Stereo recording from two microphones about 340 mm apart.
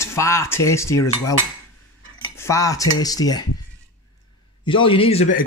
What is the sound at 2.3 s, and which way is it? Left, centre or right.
Cutlery, centre.